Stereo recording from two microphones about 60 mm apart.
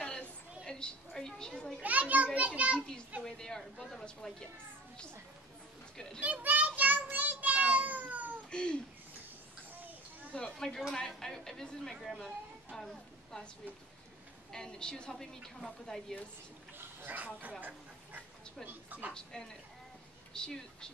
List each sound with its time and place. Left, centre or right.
0.0 s a sound: centre
1.8 s children playing: right
2.3 s a child's voice: right
3.3 s a woman's voice: centre
6.2 s child singing: right
8.5 s babbling: centre
10.3 s a woman's voice: centre
11.9 s speech: centre
12.7 s a woman's voice: centre
14.5 s a woman's voice: centre
16.7 s a sound: right
17.4 s a woman's voice: right
19.1 s a woman's voice: centre